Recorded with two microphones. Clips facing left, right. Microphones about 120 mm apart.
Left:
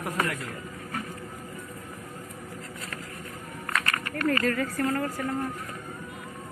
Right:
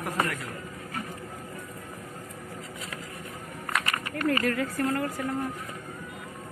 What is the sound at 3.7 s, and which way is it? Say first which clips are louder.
Speech: even; 15° right (ahead or behind).